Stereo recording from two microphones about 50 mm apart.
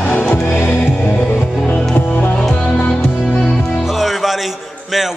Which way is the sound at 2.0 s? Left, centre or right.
Left.